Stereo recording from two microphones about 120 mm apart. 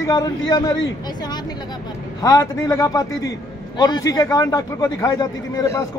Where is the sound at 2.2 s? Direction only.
25° left (ahead or behind).